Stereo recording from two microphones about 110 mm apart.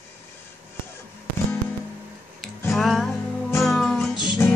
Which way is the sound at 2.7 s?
Centre (ahead or behind).